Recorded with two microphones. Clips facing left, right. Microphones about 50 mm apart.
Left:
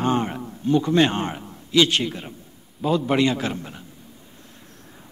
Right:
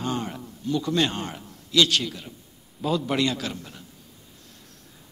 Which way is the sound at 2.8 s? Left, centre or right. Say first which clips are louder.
Left 4 dB; centre.